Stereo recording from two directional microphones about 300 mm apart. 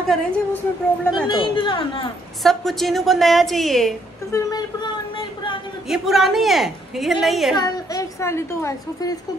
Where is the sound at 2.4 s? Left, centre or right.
Centre.